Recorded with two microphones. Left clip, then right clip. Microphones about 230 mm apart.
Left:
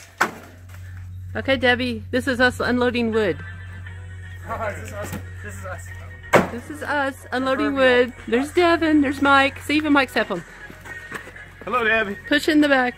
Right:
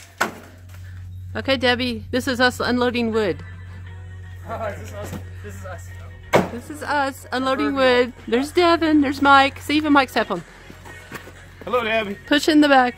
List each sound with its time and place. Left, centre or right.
1.3 s speech: centre
6.3 s speech: centre
11.6 s speech: right
12.1 s speech: centre